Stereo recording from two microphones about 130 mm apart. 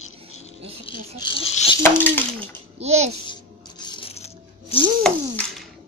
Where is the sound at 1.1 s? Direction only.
40° left (ahead or behind).